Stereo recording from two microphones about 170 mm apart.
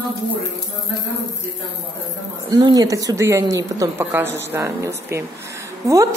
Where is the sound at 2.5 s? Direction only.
25° right (ahead or behind).